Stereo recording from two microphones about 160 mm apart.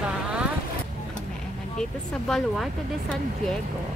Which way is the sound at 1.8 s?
5° left (ahead or behind).